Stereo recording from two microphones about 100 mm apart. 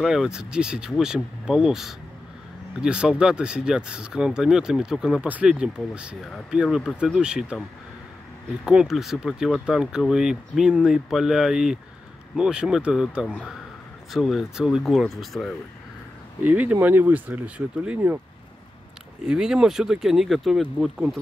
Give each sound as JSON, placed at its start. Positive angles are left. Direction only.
{"t": 0.0, "sound": "speech", "side_deg": -5}
{"t": 8.6, "sound": "speech", "side_deg": -5}
{"t": 16.4, "sound": "speech", "side_deg": -15}
{"t": 19.2, "sound": "speech", "side_deg": -10}